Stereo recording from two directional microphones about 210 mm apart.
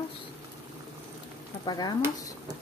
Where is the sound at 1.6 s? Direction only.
20° left (ahead or behind).